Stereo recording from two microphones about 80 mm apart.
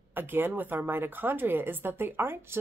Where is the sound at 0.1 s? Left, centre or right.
Right.